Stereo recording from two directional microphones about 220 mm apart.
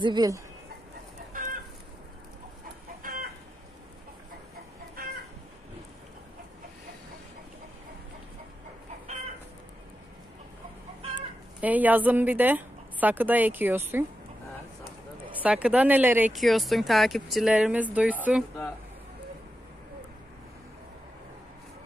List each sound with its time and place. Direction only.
0.0 s a woman's voice: 20° right (ahead or behind)
1.3 s chicken: 40° right (ahead or behind)
3.0 s chicken: 40° right (ahead or behind)
11.6 s a woman's voice: 5° right (ahead or behind)
15.4 s speech: 5° right (ahead or behind)